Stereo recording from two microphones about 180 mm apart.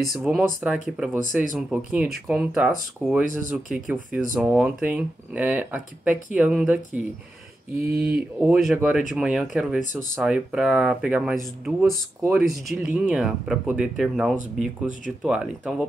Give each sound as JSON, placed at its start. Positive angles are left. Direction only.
{"t": 0.0, "sound": "speech", "side_deg": 0}
{"t": 7.8, "sound": "speech", "side_deg": -55}
{"t": 8.5, "sound": "speech", "side_deg": 0}